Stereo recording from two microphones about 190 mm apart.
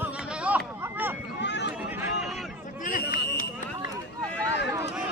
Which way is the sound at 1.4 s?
65° left (ahead or behind).